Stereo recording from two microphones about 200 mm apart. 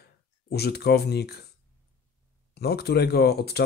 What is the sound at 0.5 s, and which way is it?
Speech, 55° left (ahead or behind).